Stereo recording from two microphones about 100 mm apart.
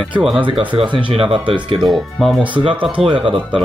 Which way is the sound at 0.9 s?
60° right (ahead or behind).